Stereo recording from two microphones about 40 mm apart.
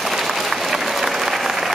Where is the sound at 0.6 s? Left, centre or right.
Centre.